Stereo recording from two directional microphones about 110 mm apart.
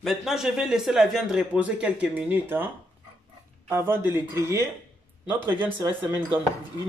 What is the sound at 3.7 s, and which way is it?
Speech, 20° right (ahead or behind).